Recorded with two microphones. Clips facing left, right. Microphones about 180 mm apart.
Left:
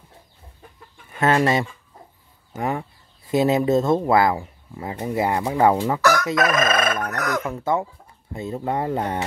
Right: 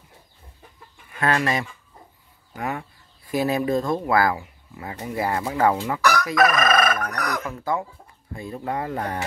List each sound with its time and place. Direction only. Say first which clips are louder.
1.2 s speech: left 4 dB; 25° left (ahead or behind)